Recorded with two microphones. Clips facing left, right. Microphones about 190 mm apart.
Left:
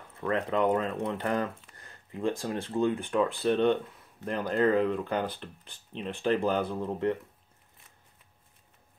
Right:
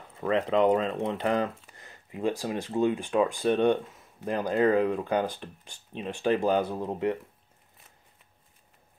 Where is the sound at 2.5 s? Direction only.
15° right (ahead or behind).